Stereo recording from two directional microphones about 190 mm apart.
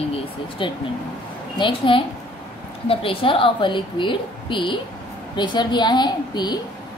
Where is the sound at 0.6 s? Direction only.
25° left (ahead or behind).